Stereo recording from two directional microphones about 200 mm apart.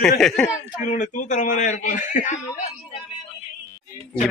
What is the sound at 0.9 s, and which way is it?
Speech, 35° left (ahead or behind).